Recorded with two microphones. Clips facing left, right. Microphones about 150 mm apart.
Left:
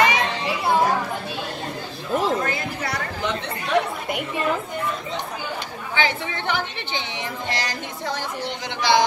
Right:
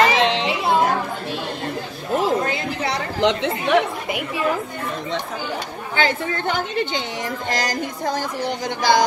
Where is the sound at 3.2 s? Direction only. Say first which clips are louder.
Right 11 dB; 90° right.